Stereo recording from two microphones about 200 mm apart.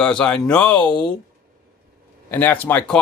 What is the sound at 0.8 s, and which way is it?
Speech, 20° left (ahead or behind).